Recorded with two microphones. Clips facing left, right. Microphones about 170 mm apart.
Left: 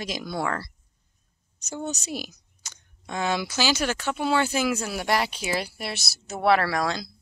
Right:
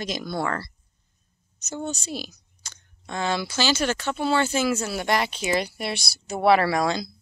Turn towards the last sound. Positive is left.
turn(degrees=0)  # may be behind; listen again after turning